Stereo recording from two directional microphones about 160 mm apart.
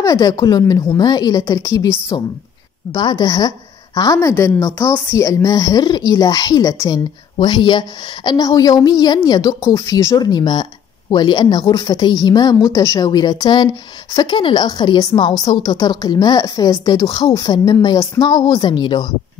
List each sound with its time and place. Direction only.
0.0 s a woman's voice: 25° left (ahead or behind)